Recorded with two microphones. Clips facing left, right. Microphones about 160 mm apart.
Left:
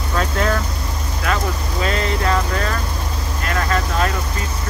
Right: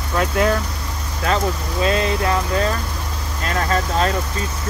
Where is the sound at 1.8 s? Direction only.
15° right (ahead or behind).